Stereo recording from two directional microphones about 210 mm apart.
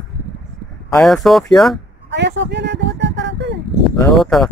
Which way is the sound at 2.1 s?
55° right (ahead or behind).